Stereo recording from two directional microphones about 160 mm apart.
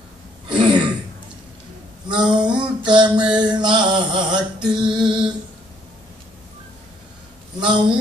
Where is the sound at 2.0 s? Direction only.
30° right (ahead or behind).